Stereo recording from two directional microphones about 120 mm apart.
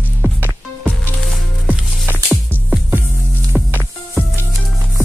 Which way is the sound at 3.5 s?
20° right (ahead or behind).